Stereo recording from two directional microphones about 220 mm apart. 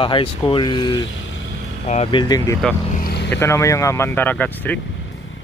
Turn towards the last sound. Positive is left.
turn(degrees=5)  # may be behind; listen again after turning